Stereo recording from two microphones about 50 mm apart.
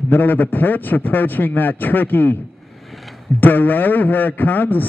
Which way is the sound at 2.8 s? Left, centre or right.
Centre.